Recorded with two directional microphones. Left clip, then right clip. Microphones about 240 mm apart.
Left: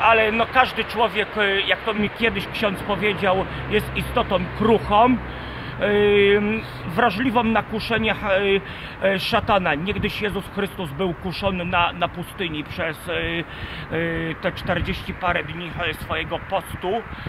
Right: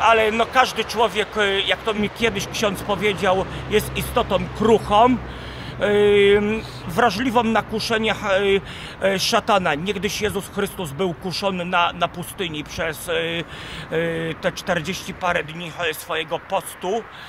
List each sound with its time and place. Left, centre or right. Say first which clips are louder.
0.0 s a man's voice: right 1 dB; centre